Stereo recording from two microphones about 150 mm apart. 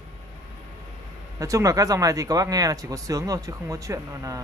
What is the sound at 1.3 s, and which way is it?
Speech, 20° right (ahead or behind).